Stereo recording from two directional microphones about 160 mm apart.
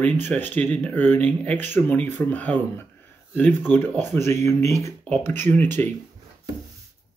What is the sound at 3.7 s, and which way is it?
Speech, 10° left (ahead or behind).